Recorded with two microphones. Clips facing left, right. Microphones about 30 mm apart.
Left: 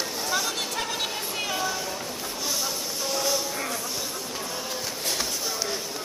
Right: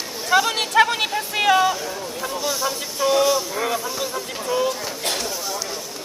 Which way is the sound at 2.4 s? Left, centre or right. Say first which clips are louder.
Right 4 dB; centre.